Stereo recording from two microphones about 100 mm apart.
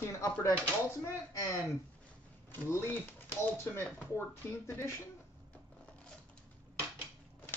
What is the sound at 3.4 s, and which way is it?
Speech, 20° left (ahead or behind).